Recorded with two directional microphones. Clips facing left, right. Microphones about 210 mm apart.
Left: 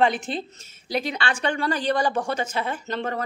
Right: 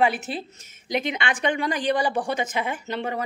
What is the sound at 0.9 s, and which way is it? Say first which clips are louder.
A woman's voice: even; 20° right (ahead or behind).